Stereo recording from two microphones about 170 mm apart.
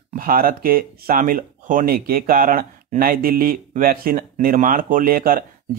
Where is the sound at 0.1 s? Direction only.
55° right (ahead or behind).